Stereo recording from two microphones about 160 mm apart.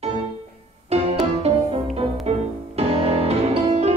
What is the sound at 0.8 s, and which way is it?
Music, 40° right (ahead or behind).